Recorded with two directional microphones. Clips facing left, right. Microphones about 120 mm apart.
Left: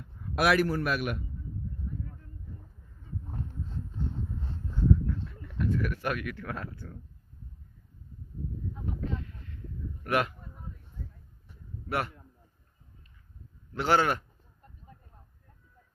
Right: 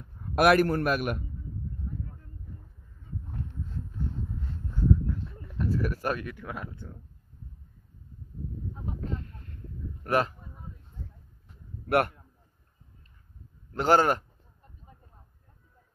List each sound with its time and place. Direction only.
0.2 s a man's voice: 50° right (ahead or behind)
5.0 s bird: 30° right (ahead or behind)
6.3 s speech: 15° right (ahead or behind)
9.0 s a sound: 45° right (ahead or behind)
10.0 s speech: 35° right (ahead or behind)
11.9 s a man's voice: 60° right (ahead or behind)
13.7 s a man's voice: 40° right (ahead or behind)